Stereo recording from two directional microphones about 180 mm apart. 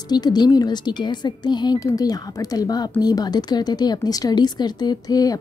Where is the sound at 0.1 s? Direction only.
25° left (ahead or behind).